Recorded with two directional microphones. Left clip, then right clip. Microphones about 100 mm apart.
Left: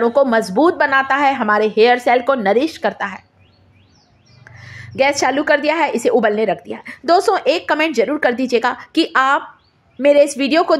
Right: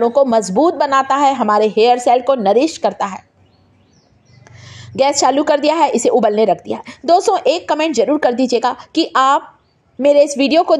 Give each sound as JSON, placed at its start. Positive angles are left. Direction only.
{"t": 0.0, "sound": "a woman's voice", "side_deg": -20}
{"t": 4.5, "sound": "a woman's voice", "side_deg": -35}
{"t": 7.1, "sound": "a woman's voice", "side_deg": -20}